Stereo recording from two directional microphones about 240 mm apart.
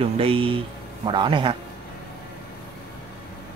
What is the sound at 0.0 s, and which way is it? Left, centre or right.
Speech, right.